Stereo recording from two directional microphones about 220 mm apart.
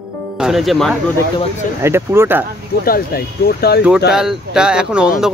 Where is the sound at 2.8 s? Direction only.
45° left (ahead or behind).